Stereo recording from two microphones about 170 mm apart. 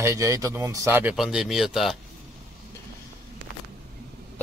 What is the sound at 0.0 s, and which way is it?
Speech, 20° right (ahead or behind).